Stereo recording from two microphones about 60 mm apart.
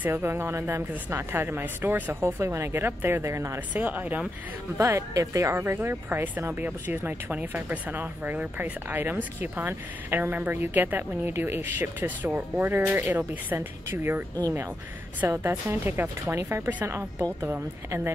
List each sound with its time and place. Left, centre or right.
0.1 s speech: right
2.2 s speech: right
3.3 s speech: right
3.7 s speech: right
4.7 s speech: right
5.6 s speech: right
15.2 s speech: right